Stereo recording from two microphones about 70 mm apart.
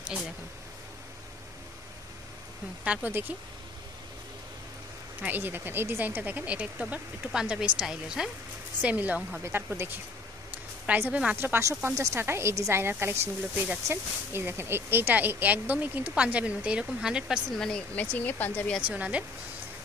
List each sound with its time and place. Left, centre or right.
2.8 s speech: centre
3.1 s a woman's voice: right
5.2 s speech: right; by 8.3 s centre
8.8 s a woman's voice: right
11.3 s a woman's voice: right
11.9 s speech: right
12.2 s a woman's voice: right; by 17.4 s centre
17.6 s speech: centre
17.9 s speech: left
18.8 s speech: centre